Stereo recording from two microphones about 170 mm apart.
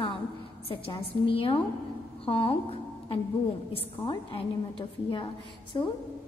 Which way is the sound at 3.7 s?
35° left (ahead or behind).